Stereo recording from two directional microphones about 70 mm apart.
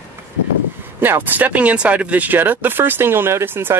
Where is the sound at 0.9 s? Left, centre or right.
Right.